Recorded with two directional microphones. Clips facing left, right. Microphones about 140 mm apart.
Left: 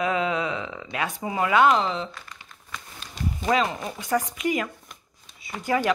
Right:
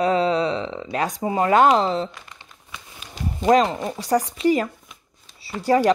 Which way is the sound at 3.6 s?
25° right (ahead or behind).